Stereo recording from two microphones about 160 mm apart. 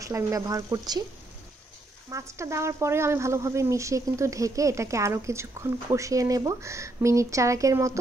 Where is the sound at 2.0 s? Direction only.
20° right (ahead or behind).